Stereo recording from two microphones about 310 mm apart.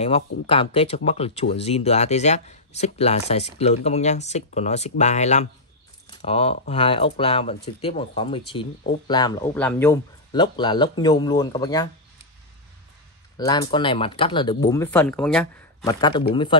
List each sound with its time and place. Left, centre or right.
0.0 s speech: centre
13.4 s speech: centre